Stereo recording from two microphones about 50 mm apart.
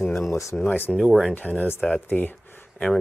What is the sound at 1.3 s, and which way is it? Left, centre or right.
Speech, left.